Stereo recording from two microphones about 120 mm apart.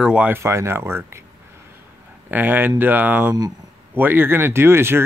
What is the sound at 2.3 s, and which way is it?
Speech, 15° right (ahead or behind).